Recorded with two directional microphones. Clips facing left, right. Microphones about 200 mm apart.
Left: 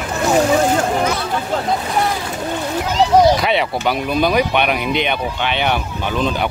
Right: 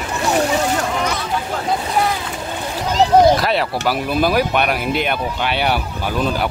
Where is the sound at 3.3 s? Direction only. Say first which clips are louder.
Even; centre (ahead or behind).